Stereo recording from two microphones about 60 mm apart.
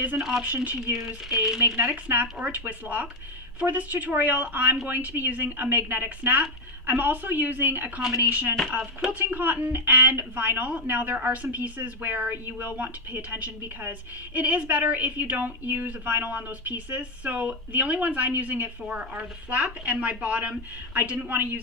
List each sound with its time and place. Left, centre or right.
0.4 s speech: right
0.9 s speech: centre
1.8 s a woman's voice: right